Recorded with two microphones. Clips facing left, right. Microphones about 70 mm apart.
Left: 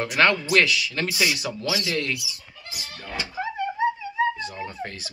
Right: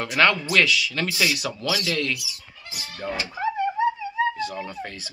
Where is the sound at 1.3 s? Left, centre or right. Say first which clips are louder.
Right 1 dB; left.